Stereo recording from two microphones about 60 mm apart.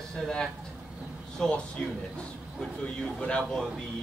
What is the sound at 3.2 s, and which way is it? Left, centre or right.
Speech, centre.